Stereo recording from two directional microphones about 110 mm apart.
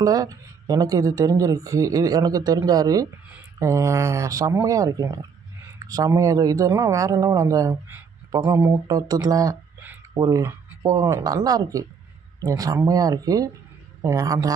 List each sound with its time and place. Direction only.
0.0 s speech: 35° right (ahead or behind)
8.8 s speech: 35° right (ahead or behind)